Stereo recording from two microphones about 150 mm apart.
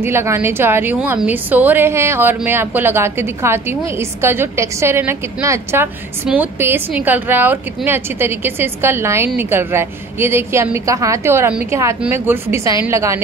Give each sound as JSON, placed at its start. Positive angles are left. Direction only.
{"t": 0.0, "sound": "a woman's voice", "side_deg": -15}